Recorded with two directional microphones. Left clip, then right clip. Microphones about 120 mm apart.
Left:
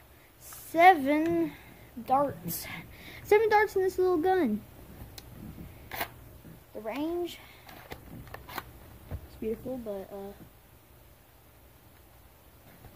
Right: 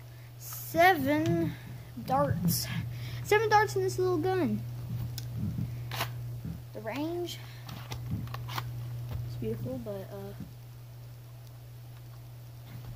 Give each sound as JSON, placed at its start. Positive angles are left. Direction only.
{"t": 0.7, "sound": "a woman's voice", "side_deg": -5}
{"t": 6.8, "sound": "speech", "side_deg": -5}
{"t": 7.9, "sound": "a sound", "side_deg": 30}
{"t": 9.4, "sound": "speech", "side_deg": -10}